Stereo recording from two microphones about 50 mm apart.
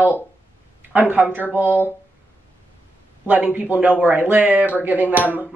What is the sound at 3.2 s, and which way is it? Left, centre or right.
Speech, right.